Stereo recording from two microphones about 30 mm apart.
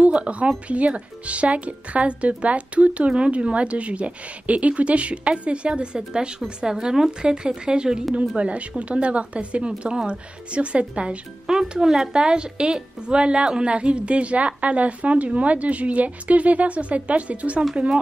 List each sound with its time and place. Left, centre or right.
0.0 s a woman's voice: right
8.4 s speech: right
11.5 s speech: right
12.1 s a woman's voice: right